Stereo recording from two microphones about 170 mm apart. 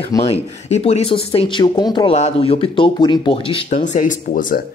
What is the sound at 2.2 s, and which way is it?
Speech, 40° left (ahead or behind).